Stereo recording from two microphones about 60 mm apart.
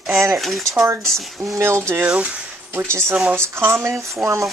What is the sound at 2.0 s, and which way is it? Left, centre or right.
Speech, right.